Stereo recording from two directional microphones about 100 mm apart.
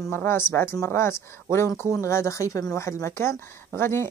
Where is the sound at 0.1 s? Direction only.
20° left (ahead or behind).